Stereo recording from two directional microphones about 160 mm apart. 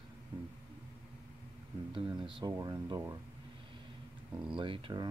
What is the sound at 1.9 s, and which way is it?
Speech, 30° right (ahead or behind).